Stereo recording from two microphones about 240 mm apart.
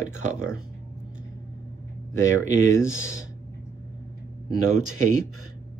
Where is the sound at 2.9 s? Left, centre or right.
Left.